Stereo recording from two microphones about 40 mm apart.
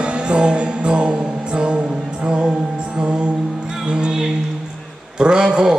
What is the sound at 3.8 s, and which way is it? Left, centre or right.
Music, right.